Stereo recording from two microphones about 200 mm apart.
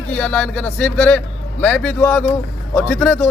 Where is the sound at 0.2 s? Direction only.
5° left (ahead or behind).